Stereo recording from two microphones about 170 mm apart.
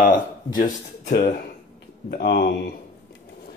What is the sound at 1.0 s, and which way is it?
Speech, 65° left (ahead or behind).